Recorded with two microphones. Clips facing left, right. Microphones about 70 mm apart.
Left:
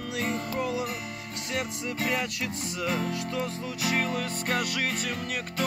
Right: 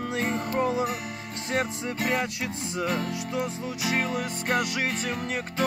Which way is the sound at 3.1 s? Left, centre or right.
Centre.